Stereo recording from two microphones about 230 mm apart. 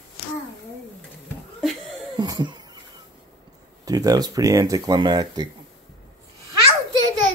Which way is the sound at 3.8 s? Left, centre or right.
Centre.